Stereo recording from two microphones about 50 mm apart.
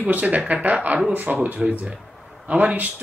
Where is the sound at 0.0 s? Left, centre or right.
Right.